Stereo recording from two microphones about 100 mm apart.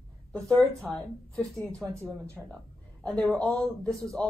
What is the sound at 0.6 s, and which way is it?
Speech, centre (ahead or behind).